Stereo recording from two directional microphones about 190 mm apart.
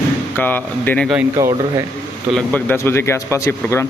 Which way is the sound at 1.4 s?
20° right (ahead or behind).